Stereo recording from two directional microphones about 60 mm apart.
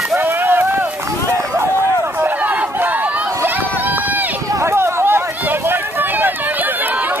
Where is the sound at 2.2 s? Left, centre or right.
Right.